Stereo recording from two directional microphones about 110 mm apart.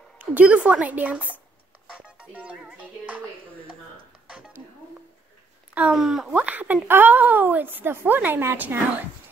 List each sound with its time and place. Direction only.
0.2 s speech: 15° right (ahead or behind)
5.9 s speech: 5° right (ahead or behind)
6.3 s speech: 15° right (ahead or behind)